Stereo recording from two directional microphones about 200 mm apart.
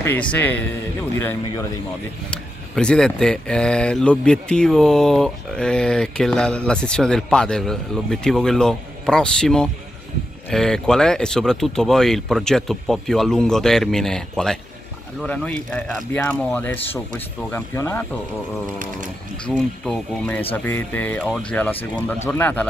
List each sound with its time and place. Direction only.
0.0 s speech: 10° left (ahead or behind)
2.3 s speech: 5° left (ahead or behind)
19.5 s speech: centre (ahead or behind)